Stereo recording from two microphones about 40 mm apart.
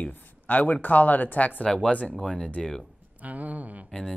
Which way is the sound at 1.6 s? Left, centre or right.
Left.